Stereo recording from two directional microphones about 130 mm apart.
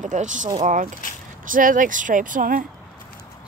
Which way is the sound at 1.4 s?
90° right.